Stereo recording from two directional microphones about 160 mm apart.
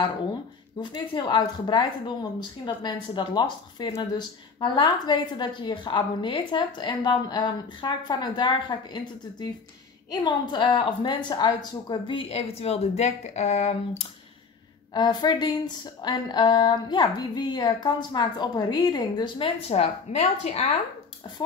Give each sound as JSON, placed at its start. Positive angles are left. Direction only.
{"t": 0.7, "sound": "a woman's voice", "side_deg": 25}
{"t": 15.0, "sound": "a woman's voice", "side_deg": 25}